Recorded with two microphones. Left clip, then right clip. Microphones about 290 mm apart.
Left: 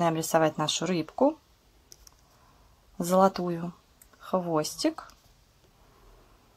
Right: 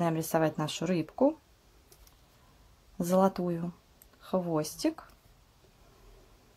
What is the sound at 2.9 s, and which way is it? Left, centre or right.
Speech, left.